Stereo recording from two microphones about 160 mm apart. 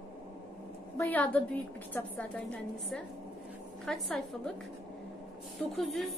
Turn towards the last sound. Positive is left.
turn(degrees=0)  # may be behind; listen again after turning